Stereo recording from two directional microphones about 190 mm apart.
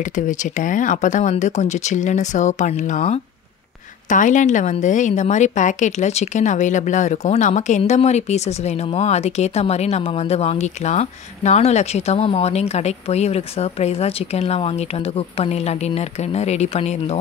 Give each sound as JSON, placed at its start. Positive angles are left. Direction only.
{"t": 0.0, "sound": "a woman's voice", "side_deg": 40}